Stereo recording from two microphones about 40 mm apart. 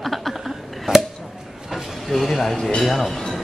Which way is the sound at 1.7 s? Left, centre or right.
Centre.